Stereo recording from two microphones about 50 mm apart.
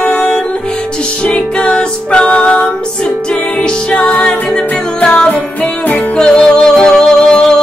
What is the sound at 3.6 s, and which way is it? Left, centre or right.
Music, left.